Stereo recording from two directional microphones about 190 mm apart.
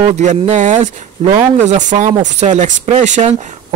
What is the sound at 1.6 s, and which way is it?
Speech, 40° right (ahead or behind).